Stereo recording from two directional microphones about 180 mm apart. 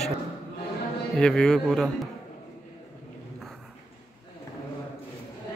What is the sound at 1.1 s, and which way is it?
Speech, 5° left (ahead or behind).